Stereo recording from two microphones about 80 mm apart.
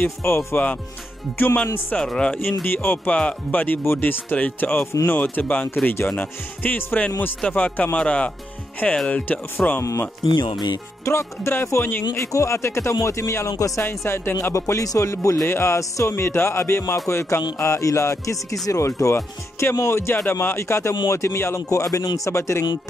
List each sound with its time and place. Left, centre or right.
0.0 s speech: left
2.0 s speech: centre
2.6 s speech: left
9.6 s speech: left
10.2 s speech: left
11.1 s speech: left
13.8 s speech: left
14.5 s speech: left